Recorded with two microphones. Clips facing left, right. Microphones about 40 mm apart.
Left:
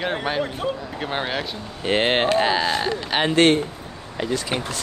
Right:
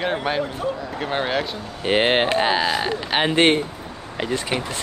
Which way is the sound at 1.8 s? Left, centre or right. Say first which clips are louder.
Right 1 dB; centre.